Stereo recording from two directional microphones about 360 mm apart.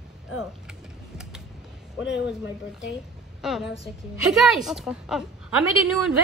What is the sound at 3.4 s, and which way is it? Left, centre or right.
Speech, centre.